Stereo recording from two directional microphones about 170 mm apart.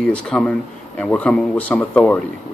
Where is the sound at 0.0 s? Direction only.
5° left (ahead or behind).